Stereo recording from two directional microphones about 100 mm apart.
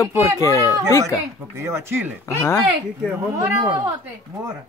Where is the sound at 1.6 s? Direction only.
25° right (ahead or behind).